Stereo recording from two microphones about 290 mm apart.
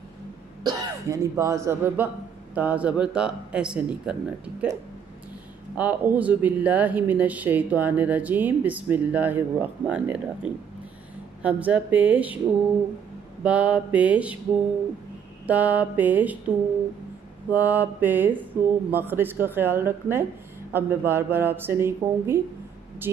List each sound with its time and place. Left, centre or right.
0.7 s speech: centre
5.8 s speech: centre
13.4 s speech: centre
15.4 s speech: centre